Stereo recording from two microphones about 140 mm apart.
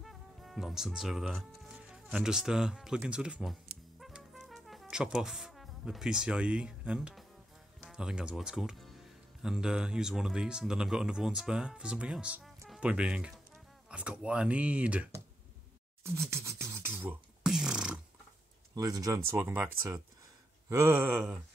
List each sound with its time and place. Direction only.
0.0 s speech: centre (ahead or behind)
4.0 s brass instrument: centre (ahead or behind)
7.8 s speech: 5° right (ahead or behind)
16.0 s beatboxing: 20° right (ahead or behind)
18.8 s speech: 25° right (ahead or behind)